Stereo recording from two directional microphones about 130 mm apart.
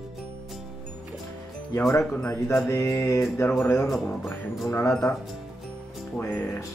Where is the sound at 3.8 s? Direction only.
Centre (ahead or behind).